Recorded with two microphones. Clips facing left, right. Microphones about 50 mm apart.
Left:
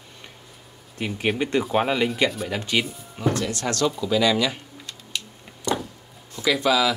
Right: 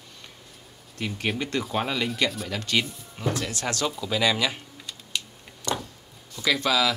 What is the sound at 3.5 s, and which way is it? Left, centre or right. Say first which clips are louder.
Speech: left 4 dB; centre.